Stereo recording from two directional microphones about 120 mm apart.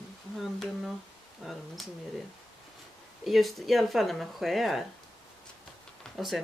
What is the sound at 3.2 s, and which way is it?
Speech, centre (ahead or behind).